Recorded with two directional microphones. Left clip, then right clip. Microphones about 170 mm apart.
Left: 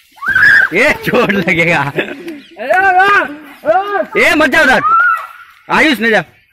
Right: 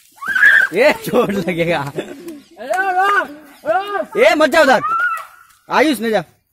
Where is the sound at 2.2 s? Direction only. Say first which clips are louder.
Left 6 dB; 30° left (ahead or behind).